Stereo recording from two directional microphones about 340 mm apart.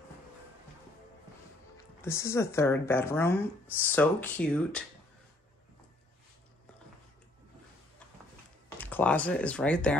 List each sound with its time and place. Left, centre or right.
2.0 s speech: centre
8.6 s speech: centre